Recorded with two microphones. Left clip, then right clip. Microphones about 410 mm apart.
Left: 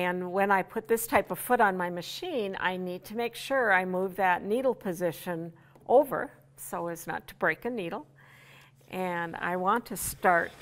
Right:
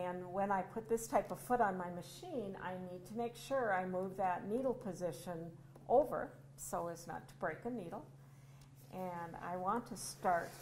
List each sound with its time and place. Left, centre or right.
0.0 s a woman's voice: left
6.7 s a woman's voice: left
7.1 s a woman's voice: left
8.9 s a woman's voice: left